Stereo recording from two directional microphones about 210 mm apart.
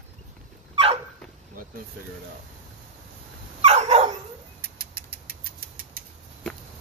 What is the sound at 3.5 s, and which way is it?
Dog, 30° right (ahead or behind).